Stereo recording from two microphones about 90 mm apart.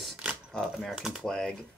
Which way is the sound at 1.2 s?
10° left (ahead or behind).